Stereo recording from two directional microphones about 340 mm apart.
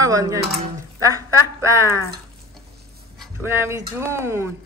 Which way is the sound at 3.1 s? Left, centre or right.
Centre.